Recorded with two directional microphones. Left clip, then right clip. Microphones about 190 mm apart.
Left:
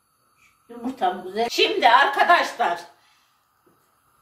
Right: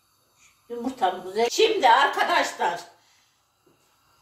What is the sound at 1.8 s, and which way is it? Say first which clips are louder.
Speech: left 4 dB; 20° left (ahead or behind).